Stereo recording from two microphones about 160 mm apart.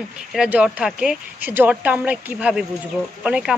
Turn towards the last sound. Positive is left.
turn(degrees=-5)  # may be behind; listen again after turning